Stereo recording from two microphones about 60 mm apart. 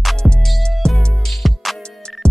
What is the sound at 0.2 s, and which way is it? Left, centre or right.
Music, centre.